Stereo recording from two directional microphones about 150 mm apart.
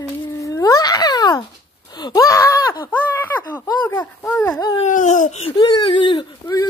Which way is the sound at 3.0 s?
10° left (ahead or behind).